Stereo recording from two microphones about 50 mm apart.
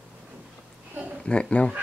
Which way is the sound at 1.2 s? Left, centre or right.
Left.